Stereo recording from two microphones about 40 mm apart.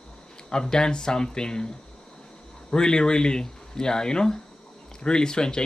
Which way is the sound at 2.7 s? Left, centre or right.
Centre.